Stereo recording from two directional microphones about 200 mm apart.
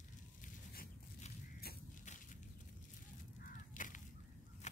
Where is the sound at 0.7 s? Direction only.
50° left (ahead or behind).